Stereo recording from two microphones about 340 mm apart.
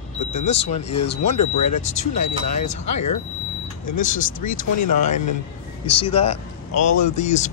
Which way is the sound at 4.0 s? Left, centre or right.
Left.